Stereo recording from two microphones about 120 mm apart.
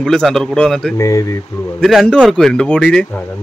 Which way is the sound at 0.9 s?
25° left (ahead or behind).